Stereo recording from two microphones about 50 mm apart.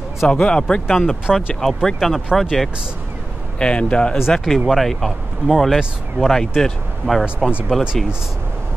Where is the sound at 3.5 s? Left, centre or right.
Centre.